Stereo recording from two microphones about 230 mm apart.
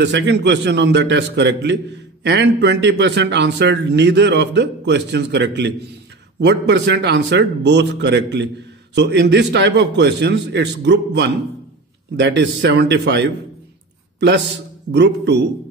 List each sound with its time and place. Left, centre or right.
0.0 s a man's voice: right
14.9 s a man's voice: right